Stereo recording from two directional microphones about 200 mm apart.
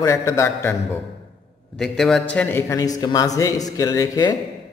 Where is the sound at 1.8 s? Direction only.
5° left (ahead or behind).